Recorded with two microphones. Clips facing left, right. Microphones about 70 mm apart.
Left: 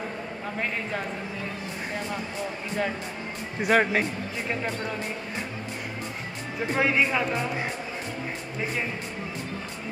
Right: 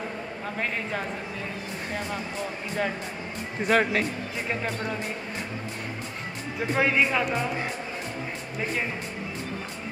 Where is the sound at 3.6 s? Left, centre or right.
Centre.